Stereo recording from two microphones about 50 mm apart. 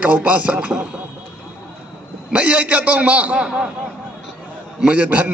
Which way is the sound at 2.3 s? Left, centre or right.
Right.